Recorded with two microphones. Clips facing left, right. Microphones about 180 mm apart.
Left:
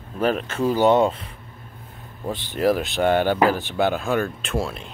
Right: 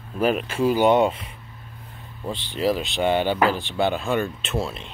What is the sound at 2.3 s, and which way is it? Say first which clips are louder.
Speech: left 2 dB; 45° left (ahead or behind).